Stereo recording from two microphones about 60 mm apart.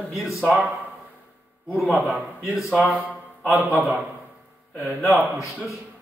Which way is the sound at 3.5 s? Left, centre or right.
Centre.